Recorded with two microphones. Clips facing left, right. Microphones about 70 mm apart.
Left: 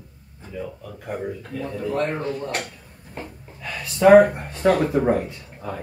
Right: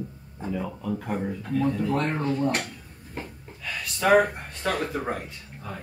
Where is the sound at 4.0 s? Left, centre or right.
Left.